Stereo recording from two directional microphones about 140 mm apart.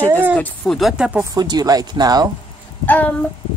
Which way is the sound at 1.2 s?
30° right (ahead or behind).